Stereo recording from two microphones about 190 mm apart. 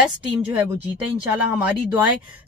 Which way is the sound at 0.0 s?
10° right (ahead or behind).